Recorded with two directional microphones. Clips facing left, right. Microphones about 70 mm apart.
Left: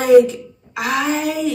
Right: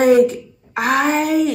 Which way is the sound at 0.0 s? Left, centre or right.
Right.